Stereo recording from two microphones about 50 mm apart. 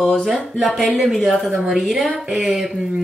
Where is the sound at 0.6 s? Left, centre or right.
Centre.